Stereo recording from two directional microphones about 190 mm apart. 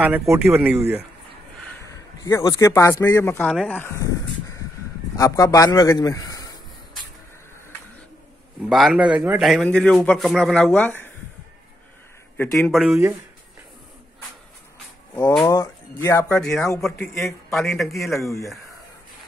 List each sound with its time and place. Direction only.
0.0 s speech: 10° right (ahead or behind)
1.9 s a man's voice: 15° left (ahead or behind)
8.6 s a man's voice: centre (ahead or behind)
12.4 s a man's voice: 5° left (ahead or behind)
15.4 s a man's voice: 15° left (ahead or behind); by 18.3 s centre (ahead or behind)